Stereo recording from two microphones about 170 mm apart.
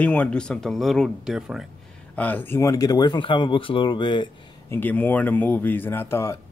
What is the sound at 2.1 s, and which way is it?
Speech, 10° left (ahead or behind).